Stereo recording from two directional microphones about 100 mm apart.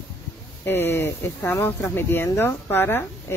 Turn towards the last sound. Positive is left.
turn(degrees=25)  # may be behind; listen again after turning